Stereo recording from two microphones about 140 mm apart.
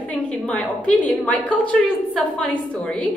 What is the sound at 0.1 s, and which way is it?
A woman's voice, 10° left (ahead or behind).